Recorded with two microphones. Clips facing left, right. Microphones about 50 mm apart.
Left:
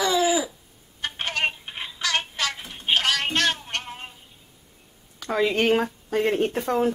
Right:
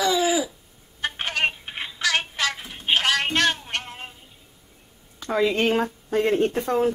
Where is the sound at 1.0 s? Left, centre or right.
Centre.